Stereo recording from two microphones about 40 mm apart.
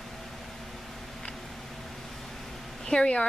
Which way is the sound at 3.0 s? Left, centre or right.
Left.